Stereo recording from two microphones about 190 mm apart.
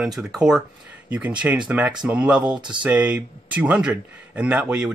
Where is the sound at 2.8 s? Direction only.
5° right (ahead or behind).